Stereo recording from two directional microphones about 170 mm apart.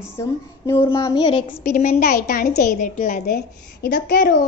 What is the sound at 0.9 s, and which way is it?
Child singing, 20° left (ahead or behind).